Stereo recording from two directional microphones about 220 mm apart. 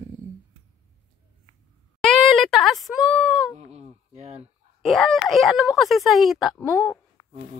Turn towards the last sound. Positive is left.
turn(degrees=-5)  # may be behind; listen again after turning